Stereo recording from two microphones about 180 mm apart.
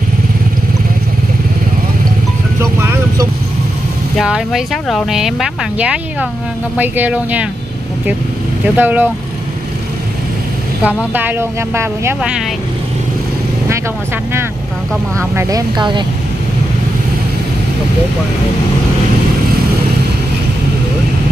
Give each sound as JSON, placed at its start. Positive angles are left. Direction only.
{"t": 2.6, "sound": "music", "side_deg": -15}
{"t": 4.2, "sound": "speech", "side_deg": 0}
{"t": 8.7, "sound": "speech", "side_deg": -10}
{"t": 10.8, "sound": "speech", "side_deg": -10}
{"t": 15.1, "sound": "speech", "side_deg": -20}